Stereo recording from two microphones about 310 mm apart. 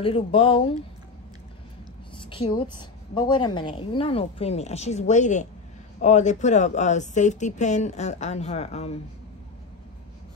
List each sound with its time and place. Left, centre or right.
0.0 s speech: centre
2.6 s speech: centre